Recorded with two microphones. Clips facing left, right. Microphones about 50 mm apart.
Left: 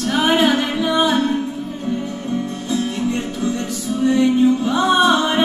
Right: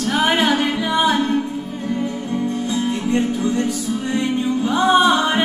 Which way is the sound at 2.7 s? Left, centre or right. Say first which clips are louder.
Left 1 dB; right.